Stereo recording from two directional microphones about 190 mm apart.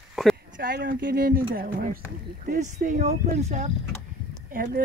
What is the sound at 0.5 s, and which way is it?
Speech, 50° right (ahead or behind).